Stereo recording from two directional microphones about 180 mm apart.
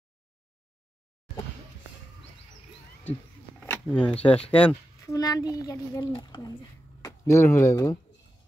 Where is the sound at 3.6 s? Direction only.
10° left (ahead or behind).